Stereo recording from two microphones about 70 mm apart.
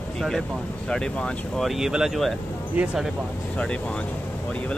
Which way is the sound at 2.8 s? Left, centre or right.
Right.